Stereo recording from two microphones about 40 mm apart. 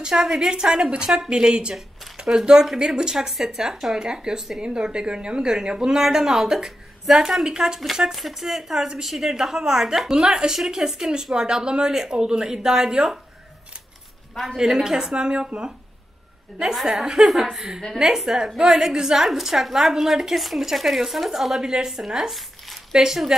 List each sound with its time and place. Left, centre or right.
0.0 s a woman's voice: centre
0.4 s speech: centre
7.9 s speech: centre
14.3 s a woman's voice: centre
14.6 s speech: centre
16.8 s a woman's voice: centre
21.5 s speech: centre
21.9 s speech: centre